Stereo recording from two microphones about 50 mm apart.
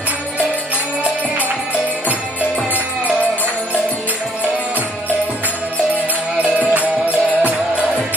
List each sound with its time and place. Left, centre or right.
6.7 s music: right